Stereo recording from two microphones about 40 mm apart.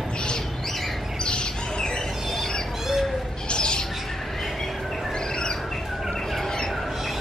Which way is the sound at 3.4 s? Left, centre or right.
Left.